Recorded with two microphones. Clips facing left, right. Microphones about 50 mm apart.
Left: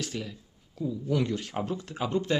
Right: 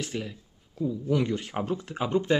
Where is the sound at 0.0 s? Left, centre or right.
Centre.